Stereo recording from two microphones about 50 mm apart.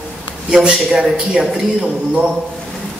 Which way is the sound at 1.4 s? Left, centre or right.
Centre.